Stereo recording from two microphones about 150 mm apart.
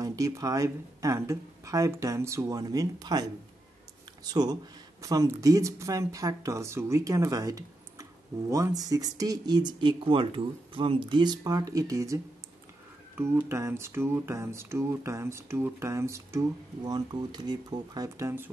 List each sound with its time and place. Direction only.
0.0 s speech: 20° right (ahead or behind)
13.2 s speech: 15° right (ahead or behind)